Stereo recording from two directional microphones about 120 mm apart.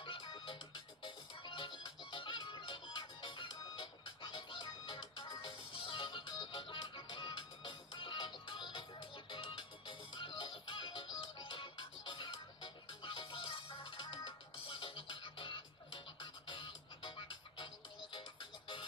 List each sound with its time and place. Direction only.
0.0 s music: 45° left (ahead or behind)
18.1 s music: 45° left (ahead or behind)